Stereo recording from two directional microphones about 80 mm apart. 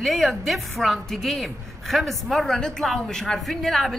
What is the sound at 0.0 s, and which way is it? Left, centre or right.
A man's voice, centre.